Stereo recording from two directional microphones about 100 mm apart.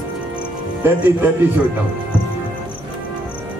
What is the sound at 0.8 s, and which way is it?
Speech, 20° right (ahead or behind).